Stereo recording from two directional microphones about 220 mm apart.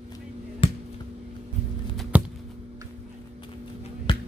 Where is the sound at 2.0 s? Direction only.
5° right (ahead or behind).